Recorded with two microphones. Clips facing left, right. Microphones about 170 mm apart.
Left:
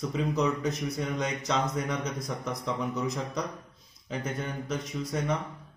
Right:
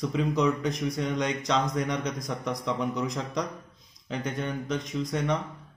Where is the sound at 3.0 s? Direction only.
5° left (ahead or behind).